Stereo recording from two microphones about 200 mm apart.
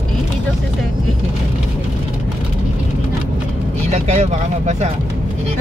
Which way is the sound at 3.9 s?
35° right (ahead or behind).